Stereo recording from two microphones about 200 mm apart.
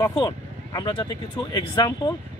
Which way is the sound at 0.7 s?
25° left (ahead or behind).